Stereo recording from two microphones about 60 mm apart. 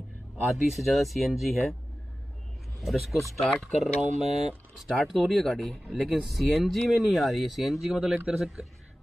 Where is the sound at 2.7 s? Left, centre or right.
Centre.